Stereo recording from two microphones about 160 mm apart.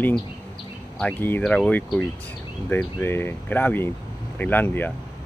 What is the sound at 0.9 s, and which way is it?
Speech, 10° left (ahead or behind).